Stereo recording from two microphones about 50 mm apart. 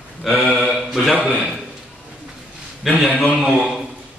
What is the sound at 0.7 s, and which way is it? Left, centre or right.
Mantra, centre.